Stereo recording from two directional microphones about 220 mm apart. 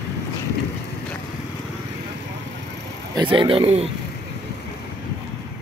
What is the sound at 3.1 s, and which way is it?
Speech, 20° right (ahead or behind).